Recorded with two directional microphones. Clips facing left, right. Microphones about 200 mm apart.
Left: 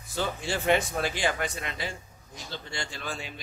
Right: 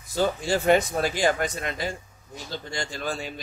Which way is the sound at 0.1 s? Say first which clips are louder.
Right 7 dB; 40° right (ahead or behind).